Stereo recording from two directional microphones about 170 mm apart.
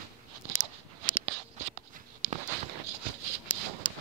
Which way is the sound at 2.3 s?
40° right (ahead or behind).